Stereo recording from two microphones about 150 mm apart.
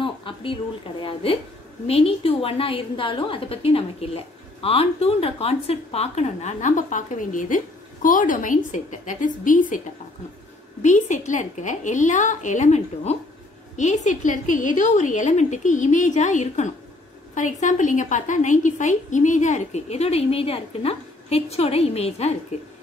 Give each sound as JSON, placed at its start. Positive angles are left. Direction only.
{"t": 0.0, "sound": "a sound", "side_deg": 35}
{"t": 1.0, "sound": "a woman's voice", "side_deg": 40}
{"t": 10.8, "sound": "a woman's voice", "side_deg": 55}